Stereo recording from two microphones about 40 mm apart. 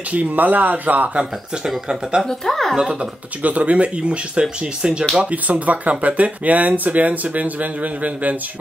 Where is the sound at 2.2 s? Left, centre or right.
Centre.